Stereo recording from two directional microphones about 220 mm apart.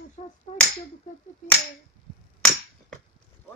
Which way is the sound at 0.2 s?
30° left (ahead or behind).